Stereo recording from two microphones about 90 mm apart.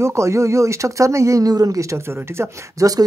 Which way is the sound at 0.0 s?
35° right (ahead or behind).